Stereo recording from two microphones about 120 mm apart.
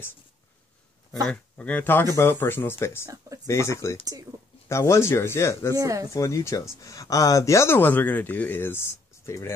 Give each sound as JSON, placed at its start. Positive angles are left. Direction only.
{"t": 1.2, "sound": "speech", "side_deg": 10}
{"t": 4.0, "sound": "speech", "side_deg": -30}
{"t": 4.6, "sound": "speech", "side_deg": 25}
{"t": 5.8, "sound": "speech", "side_deg": -25}
{"t": 6.1, "sound": "speech", "side_deg": 25}